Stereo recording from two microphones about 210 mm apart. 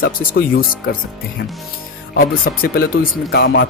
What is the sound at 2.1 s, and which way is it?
Speech, 45° left (ahead or behind).